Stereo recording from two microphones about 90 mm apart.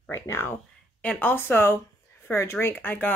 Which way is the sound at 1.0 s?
15° left (ahead or behind).